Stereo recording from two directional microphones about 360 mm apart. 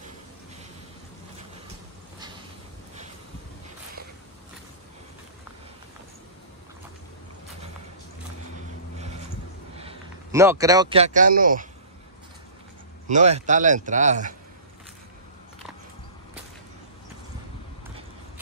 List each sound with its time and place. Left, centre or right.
9.8 s a man's voice: centre
13.1 s speech: centre